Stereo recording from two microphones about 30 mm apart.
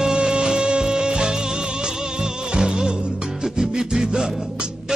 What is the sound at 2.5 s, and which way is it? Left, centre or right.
Music, right.